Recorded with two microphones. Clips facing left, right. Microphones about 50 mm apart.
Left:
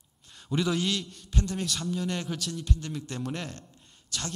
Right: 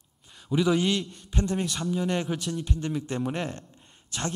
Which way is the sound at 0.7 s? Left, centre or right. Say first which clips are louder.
Right 4 dB; centre.